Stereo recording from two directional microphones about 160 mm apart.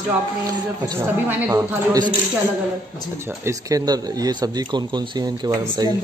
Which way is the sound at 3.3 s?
20° right (ahead or behind).